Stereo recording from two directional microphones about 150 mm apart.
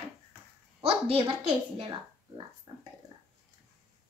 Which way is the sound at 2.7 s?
25° right (ahead or behind).